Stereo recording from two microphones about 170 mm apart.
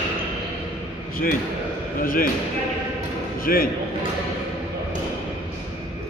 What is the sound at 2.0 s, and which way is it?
Speech, 55° left (ahead or behind).